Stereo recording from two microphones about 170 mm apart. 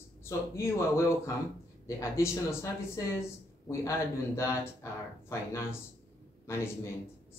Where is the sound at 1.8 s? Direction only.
15° left (ahead or behind).